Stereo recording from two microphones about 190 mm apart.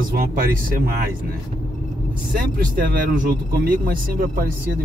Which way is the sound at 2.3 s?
45° right (ahead or behind).